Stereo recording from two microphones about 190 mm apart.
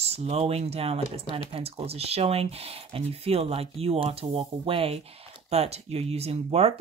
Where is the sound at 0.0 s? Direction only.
35° right (ahead or behind).